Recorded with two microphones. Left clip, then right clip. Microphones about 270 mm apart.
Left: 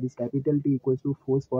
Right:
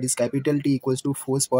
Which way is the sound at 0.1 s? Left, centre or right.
Right.